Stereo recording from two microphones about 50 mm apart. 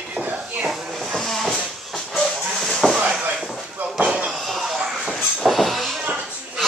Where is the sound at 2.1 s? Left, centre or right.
Centre.